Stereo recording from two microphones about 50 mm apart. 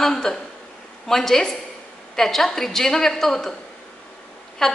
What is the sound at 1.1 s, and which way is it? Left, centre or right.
A woman's voice, centre.